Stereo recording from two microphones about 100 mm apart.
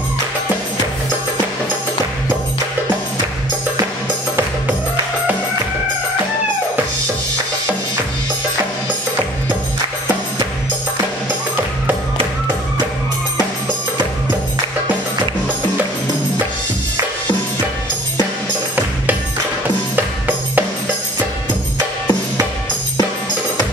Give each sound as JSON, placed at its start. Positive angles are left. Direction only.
{"t": 20.0, "sound": "music", "side_deg": -20}